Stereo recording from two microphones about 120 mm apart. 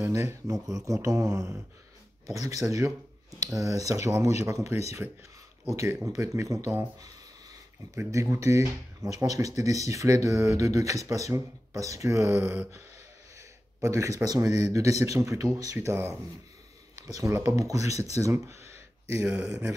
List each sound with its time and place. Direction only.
0.0 s speech: 20° right (ahead or behind)
5.8 s speech: 20° right (ahead or behind)
7.9 s speech: 25° right (ahead or behind)
13.7 s speech: 25° right (ahead or behind)
18.1 s a sound: 25° right (ahead or behind)
19.2 s speech: 5° right (ahead or behind)